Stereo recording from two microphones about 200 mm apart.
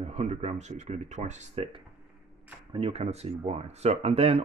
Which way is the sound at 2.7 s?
30° right (ahead or behind).